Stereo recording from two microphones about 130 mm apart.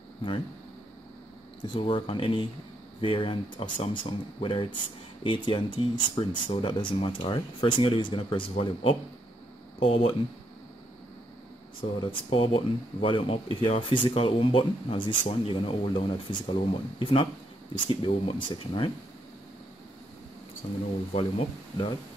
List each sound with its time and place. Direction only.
1.6 s speech: 40° left (ahead or behind)
12.0 s speech: 40° left (ahead or behind)
21.1 s speech: 50° left (ahead or behind)